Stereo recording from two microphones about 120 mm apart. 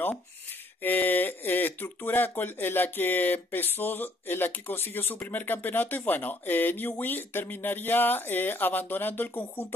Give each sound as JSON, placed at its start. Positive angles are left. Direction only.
{"t": 0.8, "sound": "speech", "side_deg": 15}